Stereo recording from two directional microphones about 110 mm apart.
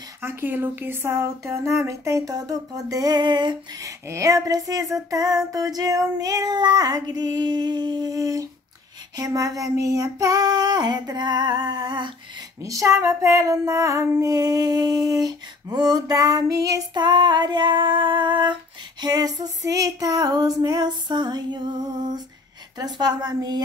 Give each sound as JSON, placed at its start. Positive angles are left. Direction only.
{"t": 0.2, "sound": "speech", "side_deg": -20}
{"t": 3.8, "sound": "female singing", "side_deg": -30}
{"t": 12.6, "sound": "female singing", "side_deg": -30}